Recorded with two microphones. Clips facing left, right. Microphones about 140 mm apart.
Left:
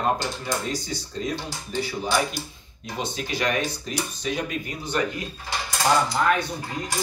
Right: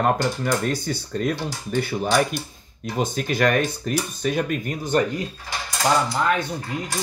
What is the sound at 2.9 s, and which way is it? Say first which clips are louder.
Speech: right 6 dB; 50° right (ahead or behind).